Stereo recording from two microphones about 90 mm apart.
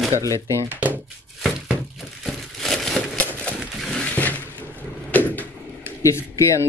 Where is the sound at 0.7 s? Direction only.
20° right (ahead or behind).